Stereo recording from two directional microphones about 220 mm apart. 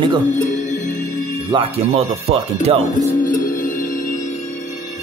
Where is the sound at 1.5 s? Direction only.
25° right (ahead or behind).